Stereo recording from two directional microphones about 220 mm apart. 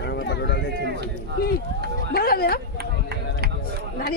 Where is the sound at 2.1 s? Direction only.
45° left (ahead or behind).